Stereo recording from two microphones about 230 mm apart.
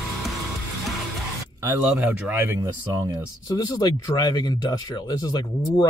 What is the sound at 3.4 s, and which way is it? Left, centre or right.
Speech, centre.